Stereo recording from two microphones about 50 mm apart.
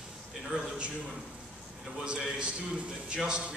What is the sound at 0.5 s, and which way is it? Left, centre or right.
Speech, centre.